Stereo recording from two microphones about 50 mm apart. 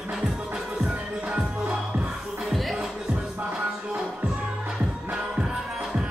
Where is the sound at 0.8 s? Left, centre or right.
Right.